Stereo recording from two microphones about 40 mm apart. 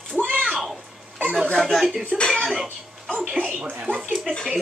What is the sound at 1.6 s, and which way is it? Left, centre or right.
Speech, centre.